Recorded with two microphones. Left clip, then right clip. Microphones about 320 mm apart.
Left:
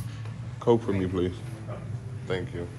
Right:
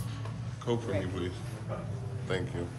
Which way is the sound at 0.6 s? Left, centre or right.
Centre.